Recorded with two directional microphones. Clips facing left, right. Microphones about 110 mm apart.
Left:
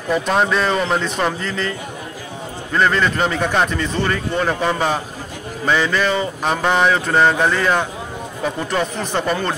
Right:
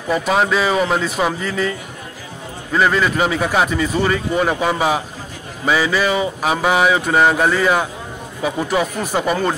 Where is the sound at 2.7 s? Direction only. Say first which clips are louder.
Right 1 dB; 5° right (ahead or behind).